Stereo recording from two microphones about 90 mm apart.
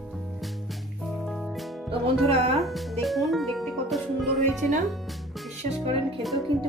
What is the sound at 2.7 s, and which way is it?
Music, centre (ahead or behind).